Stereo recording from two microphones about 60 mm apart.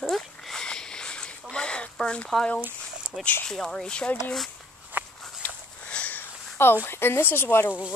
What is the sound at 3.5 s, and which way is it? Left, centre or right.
Speech, centre.